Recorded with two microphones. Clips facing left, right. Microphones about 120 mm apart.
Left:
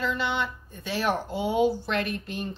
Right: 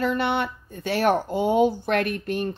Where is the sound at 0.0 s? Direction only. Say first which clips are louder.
Right 5 dB; 60° right (ahead or behind).